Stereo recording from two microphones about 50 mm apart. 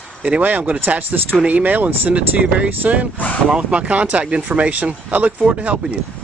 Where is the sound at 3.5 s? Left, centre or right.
Right.